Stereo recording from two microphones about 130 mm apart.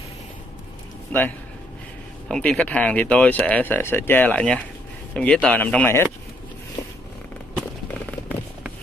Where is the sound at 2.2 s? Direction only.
5° left (ahead or behind).